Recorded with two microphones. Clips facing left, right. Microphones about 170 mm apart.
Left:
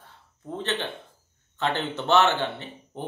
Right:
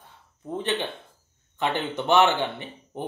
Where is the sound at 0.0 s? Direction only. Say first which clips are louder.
Right 2 dB; 15° right (ahead or behind).